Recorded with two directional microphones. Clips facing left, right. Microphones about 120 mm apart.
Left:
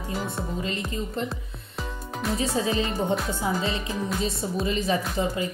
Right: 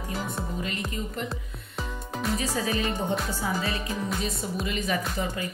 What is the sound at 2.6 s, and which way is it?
Speech, 25° left (ahead or behind).